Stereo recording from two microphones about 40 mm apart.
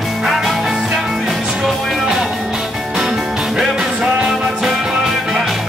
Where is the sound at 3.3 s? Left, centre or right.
Centre.